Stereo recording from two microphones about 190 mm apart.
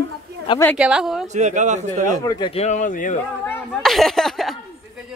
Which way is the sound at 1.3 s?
40° right (ahead or behind).